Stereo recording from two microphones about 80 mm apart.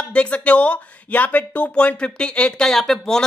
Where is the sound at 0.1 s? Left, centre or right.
Centre.